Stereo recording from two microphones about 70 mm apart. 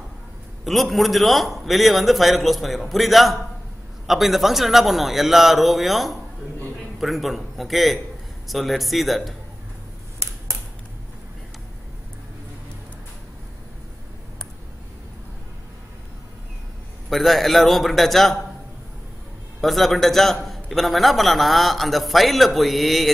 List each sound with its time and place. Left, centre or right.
0.7 s a man's voice: centre
10.1 s a sound: right
17.1 s a man's voice: centre
19.6 s a man's voice: centre